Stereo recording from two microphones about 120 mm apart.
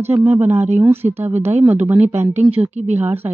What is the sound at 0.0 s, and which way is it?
Speech, 15° right (ahead or behind).